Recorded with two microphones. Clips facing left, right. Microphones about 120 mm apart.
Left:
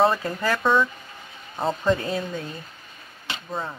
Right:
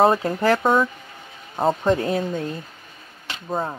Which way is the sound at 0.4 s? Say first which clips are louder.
Right 6 dB; 20° right (ahead or behind).